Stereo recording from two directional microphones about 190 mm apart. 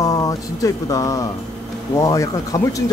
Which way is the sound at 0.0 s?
20° left (ahead or behind).